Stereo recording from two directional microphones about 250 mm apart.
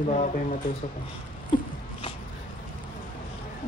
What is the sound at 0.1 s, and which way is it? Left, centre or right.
Speech, left.